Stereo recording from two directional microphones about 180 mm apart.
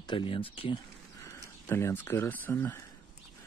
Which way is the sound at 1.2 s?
15° left (ahead or behind).